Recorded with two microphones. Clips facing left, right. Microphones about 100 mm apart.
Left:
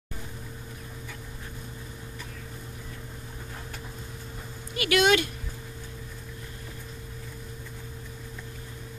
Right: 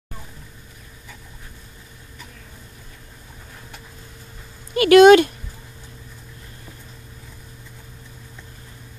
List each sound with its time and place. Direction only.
4.7 s speech: 45° right (ahead or behind)